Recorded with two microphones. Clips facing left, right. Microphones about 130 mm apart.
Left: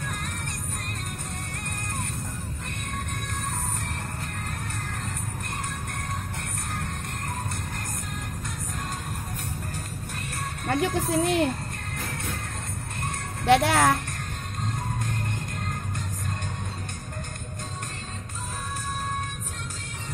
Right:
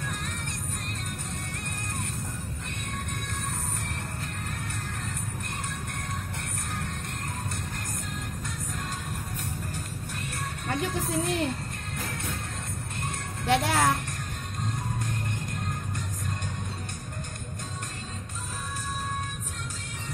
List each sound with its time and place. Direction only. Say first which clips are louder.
10.7 s speech: left 5 dB; 65° left (ahead or behind)
13.5 s speech: left 4 dB; 70° left (ahead or behind)